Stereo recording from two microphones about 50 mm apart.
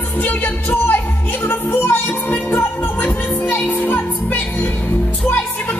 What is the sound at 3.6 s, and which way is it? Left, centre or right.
Music, left.